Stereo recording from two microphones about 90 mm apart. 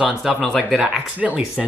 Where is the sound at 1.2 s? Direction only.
15° right (ahead or behind).